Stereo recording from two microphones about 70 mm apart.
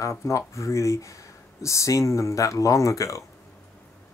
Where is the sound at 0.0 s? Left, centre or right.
Left.